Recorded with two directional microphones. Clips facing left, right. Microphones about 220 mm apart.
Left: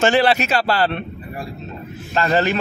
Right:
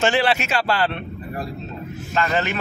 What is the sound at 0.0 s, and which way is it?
Speech, 40° left (ahead or behind).